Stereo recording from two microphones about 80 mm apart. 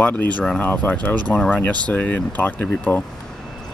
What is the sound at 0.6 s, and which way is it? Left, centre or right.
Speech, left.